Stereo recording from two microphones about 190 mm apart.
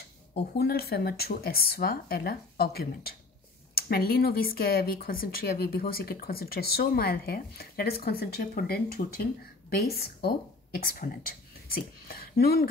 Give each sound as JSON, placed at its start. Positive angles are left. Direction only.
{"t": 0.4, "sound": "speech", "side_deg": 55}